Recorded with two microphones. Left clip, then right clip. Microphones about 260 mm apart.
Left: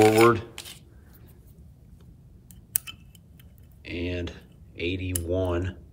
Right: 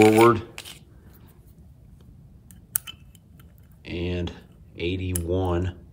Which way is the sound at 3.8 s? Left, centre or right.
Centre.